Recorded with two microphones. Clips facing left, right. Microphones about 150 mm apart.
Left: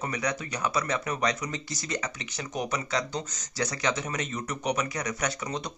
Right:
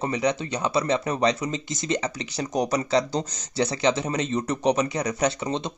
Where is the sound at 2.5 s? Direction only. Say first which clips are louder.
Right 8 dB; 35° right (ahead or behind).